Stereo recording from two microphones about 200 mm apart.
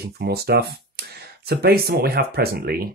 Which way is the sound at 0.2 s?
55° right (ahead or behind).